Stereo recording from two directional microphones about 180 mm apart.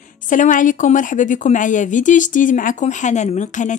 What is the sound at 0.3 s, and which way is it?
A woman's voice, 45° left (ahead or behind).